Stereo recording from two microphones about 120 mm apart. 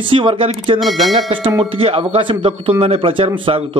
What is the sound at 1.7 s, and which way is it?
Speech, 50° right (ahead or behind).